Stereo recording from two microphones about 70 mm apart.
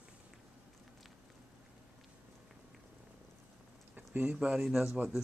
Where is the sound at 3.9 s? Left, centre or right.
Right.